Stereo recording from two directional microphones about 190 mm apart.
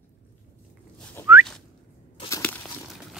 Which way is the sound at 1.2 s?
10° left (ahead or behind).